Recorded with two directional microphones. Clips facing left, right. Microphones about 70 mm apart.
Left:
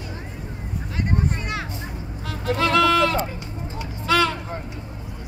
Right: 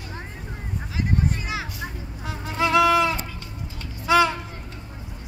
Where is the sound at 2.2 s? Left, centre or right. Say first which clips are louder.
Left 2 dB; centre.